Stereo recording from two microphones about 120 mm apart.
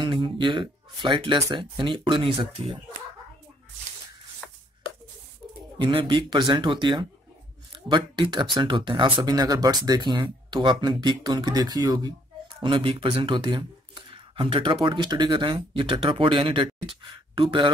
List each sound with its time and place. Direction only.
0.0 s speech: 45° right (ahead or behind)
5.8 s speech: 45° right (ahead or behind)
12.6 s speech: 50° right (ahead or behind)